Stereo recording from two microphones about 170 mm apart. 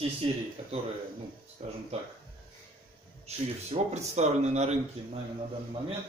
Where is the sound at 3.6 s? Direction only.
40° right (ahead or behind).